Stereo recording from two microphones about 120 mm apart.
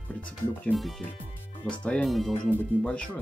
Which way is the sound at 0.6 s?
Centre (ahead or behind).